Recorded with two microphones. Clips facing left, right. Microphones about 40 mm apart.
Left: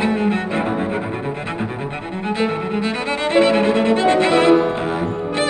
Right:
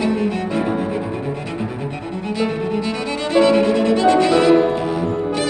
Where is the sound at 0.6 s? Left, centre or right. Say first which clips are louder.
Even; left.